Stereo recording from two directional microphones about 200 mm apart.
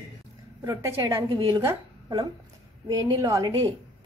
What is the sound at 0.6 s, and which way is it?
A woman's voice, 15° right (ahead or behind).